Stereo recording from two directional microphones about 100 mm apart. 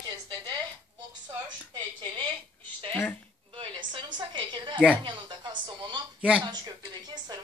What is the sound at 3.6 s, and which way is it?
A woman's voice, 55° right (ahead or behind).